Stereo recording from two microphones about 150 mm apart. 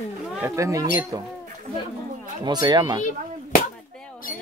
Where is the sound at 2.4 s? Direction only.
30° right (ahead or behind).